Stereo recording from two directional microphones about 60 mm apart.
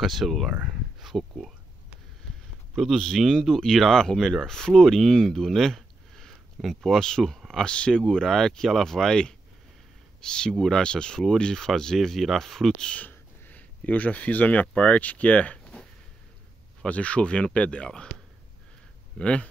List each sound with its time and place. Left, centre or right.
0.0 s speech: centre
2.7 s speech: centre
10.5 s speech: centre
10.8 s speech: centre
12.7 s speech: centre
13.0 s a sound: left
14.7 s speech: centre
16.8 s speech: left
19.1 s speech: centre